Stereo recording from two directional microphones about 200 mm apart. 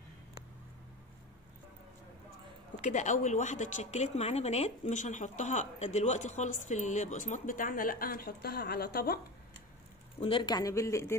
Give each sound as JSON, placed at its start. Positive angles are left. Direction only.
{"t": 2.8, "sound": "a woman's voice", "side_deg": 35}
{"t": 10.2, "sound": "speech", "side_deg": 25}